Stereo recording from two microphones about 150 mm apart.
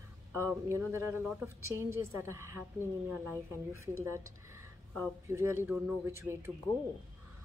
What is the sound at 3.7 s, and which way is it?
A woman's voice, 20° right (ahead or behind).